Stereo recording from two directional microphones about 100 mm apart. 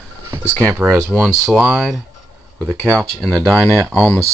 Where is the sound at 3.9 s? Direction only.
15° left (ahead or behind).